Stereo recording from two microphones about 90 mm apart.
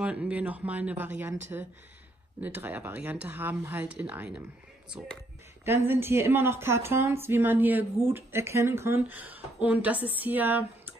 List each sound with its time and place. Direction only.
0.0 s a woman's voice: 15° right (ahead or behind)
5.7 s a woman's voice: 25° right (ahead or behind)